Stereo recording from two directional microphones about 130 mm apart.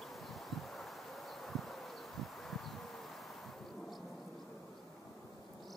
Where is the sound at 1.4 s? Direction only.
Centre (ahead or behind).